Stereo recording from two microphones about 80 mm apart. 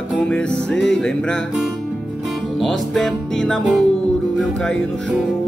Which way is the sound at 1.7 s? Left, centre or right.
Centre.